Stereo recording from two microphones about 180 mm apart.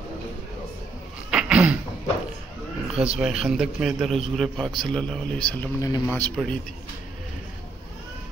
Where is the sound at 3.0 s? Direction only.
5° right (ahead or behind); by 6.3 s 15° left (ahead or behind).